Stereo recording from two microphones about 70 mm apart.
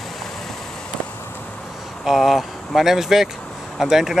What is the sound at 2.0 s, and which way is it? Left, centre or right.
Speech, centre.